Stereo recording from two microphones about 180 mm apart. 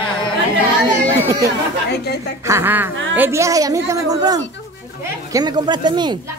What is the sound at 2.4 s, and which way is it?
A woman's voice, 15° right (ahead or behind).